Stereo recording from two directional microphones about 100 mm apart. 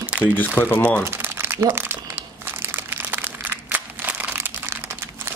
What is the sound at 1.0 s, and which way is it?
Crumpling, 20° right (ahead or behind).